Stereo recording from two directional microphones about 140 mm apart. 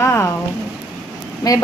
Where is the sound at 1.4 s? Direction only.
25° left (ahead or behind).